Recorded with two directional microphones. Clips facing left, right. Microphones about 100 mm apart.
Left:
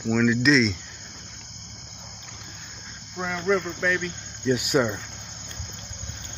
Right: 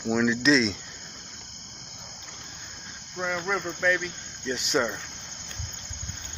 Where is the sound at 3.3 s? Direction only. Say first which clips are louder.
Left 8 dB; 5° right (ahead or behind).